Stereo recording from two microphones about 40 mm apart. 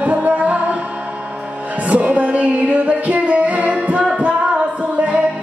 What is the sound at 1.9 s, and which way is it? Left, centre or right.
Music, right.